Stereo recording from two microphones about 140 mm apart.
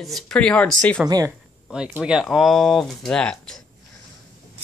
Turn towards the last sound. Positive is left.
turn(degrees=5)  # may be behind; listen again after turning